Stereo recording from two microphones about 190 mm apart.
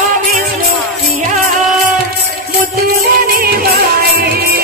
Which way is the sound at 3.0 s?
55° right (ahead or behind).